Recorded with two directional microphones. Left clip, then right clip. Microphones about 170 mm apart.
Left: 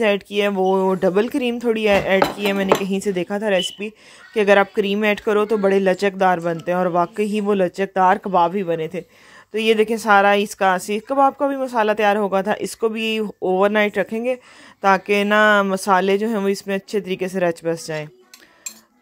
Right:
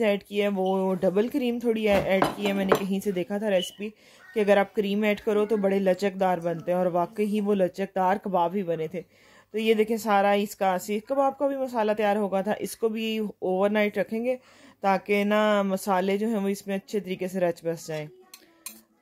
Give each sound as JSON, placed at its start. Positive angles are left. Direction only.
{"t": 0.0, "sound": "speech", "side_deg": 20}